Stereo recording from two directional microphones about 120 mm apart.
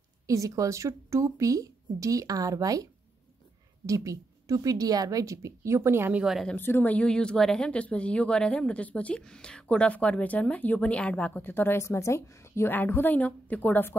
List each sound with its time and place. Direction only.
0.3 s speech: 25° right (ahead or behind)
6.2 s speech: 5° right (ahead or behind)
6.5 s speech: 15° left (ahead or behind)